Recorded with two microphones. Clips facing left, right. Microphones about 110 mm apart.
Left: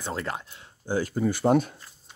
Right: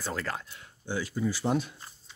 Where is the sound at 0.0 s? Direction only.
25° left (ahead or behind).